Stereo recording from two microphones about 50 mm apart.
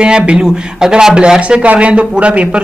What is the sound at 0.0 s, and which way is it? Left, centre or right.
Speech, centre.